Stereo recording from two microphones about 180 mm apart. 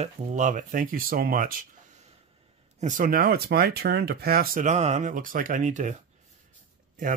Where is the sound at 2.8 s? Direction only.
50° right (ahead or behind).